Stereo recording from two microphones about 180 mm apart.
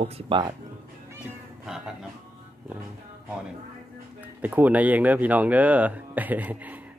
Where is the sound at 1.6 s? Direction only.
5° right (ahead or behind).